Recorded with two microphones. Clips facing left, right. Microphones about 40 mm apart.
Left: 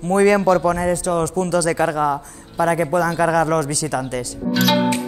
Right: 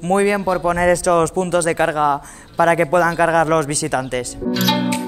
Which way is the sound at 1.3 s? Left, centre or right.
Right.